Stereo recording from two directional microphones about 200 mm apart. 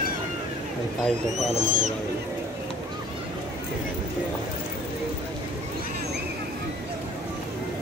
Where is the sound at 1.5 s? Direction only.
35° right (ahead or behind).